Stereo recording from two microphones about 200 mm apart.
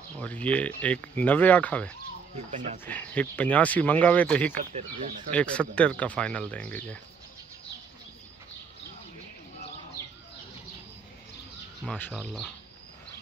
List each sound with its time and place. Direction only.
0.2 s speech: 5° left (ahead or behind)
2.3 s speech: 35° right (ahead or behind)
2.8 s speech: 10° left (ahead or behind)
4.6 s speech: 40° right (ahead or behind)
5.3 s speech: 5° left (ahead or behind)
10.0 s a sound: 15° left (ahead or behind)
11.8 s speech: 5° left (ahead or behind)